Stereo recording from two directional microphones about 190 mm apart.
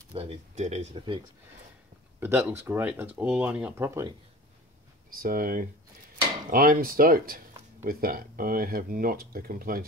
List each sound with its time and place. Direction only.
0.1 s speech: 30° right (ahead or behind)
2.1 s speech: 10° right (ahead or behind)
5.1 s speech: 50° right (ahead or behind)